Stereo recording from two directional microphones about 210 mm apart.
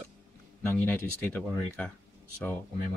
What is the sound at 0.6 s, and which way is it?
Speech, 10° left (ahead or behind).